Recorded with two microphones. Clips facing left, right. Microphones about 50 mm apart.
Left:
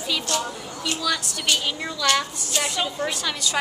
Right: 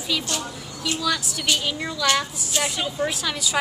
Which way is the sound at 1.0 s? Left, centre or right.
Centre.